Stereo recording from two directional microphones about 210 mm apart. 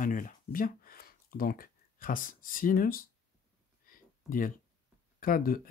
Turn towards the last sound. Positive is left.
turn(degrees=40)  # may be behind; listen again after turning